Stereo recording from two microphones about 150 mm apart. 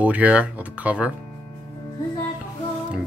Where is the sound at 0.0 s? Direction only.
10° right (ahead or behind).